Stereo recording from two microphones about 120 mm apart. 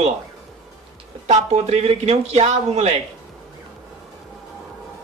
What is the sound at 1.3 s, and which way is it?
Speech, 65° right (ahead or behind).